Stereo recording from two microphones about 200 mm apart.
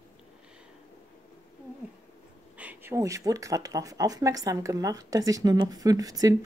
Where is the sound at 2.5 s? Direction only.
10° right (ahead or behind).